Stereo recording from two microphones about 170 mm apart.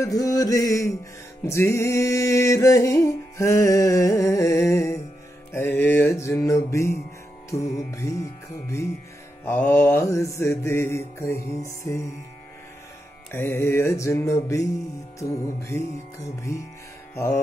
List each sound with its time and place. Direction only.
0.0 s mantra: 20° left (ahead or behind)
1.4 s music: 15° left (ahead or behind)
9.4 s music: 10° left (ahead or behind)
13.3 s music: 15° left (ahead or behind)